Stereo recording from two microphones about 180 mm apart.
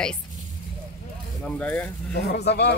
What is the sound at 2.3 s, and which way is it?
Speech, 70° left (ahead or behind).